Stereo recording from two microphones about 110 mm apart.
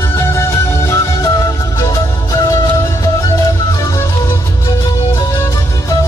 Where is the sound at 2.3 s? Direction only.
30° left (ahead or behind).